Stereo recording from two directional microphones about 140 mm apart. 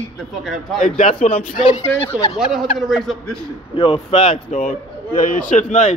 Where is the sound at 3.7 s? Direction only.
40° left (ahead or behind).